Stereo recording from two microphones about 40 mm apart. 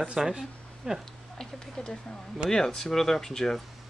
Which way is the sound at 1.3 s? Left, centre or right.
Centre.